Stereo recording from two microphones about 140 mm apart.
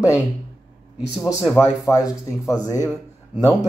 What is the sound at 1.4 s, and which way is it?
Speech, 20° left (ahead or behind).